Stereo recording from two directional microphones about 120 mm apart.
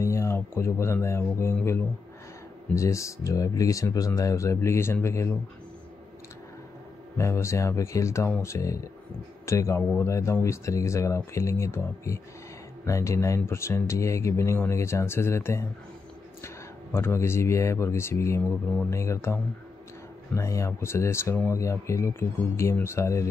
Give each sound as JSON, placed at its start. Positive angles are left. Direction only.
{"t": 0.0, "sound": "speech", "side_deg": 25}
{"t": 7.2, "sound": "speech", "side_deg": 25}